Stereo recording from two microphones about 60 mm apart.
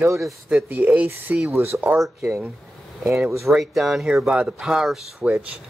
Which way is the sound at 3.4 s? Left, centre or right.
Centre.